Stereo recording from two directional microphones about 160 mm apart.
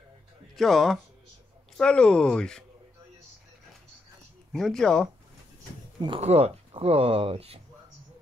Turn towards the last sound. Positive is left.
turn(degrees=-40)  # may be behind; listen again after turning